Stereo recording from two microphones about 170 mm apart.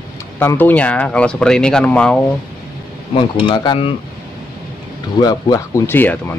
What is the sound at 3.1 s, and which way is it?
Speech, 30° left (ahead or behind).